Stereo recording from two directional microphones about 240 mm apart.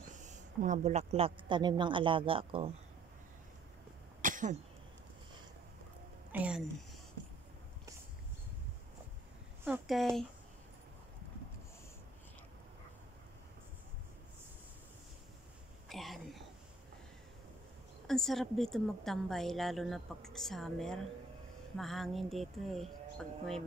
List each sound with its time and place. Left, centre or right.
0.1 s speech: right
4.2 s cough: right
6.3 s a woman's voice: centre
9.7 s a woman's voice: centre
15.9 s a sound: centre
18.0 s a woman's voice: centre